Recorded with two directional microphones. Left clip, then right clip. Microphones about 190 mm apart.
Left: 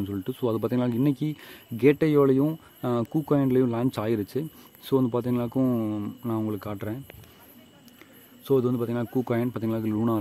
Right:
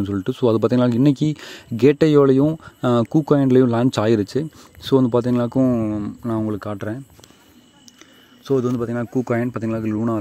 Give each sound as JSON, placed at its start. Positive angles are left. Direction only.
{"t": 0.0, "sound": "speech", "side_deg": -30}
{"t": 8.5, "sound": "a man's voice", "side_deg": -15}